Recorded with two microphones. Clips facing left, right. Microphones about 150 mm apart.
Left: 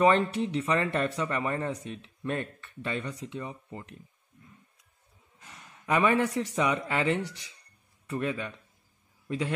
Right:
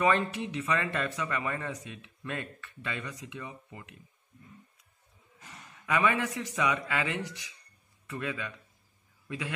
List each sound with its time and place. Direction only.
0.0 s speech: 30° left (ahead or behind)
5.9 s speech: 35° left (ahead or behind)